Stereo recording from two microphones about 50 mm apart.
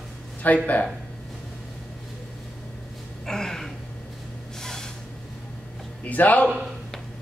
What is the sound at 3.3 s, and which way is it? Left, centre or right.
Gasp, centre.